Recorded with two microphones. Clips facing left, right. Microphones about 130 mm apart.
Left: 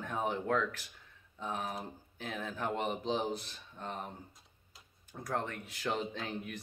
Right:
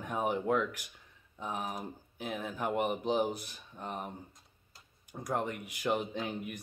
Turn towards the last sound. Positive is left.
turn(degrees=-15)  # may be behind; listen again after turning